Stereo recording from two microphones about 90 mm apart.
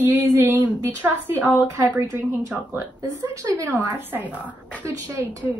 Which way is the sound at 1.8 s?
35° right (ahead or behind).